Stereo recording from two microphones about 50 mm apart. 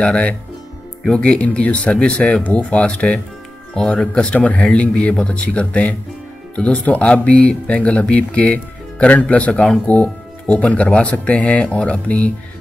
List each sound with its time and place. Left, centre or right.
0.0 s speech: left